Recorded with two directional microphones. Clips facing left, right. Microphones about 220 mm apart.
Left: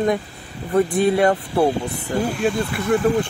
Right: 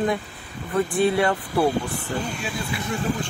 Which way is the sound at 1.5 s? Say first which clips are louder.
Left 3 dB; 20° left (ahead or behind).